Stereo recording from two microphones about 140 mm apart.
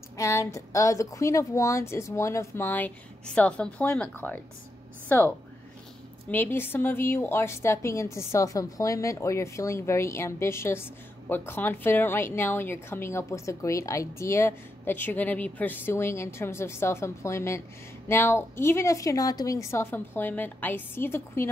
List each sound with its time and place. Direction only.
0.2 s a woman's voice: 20° left (ahead or behind)
6.3 s a woman's voice: 15° left (ahead or behind)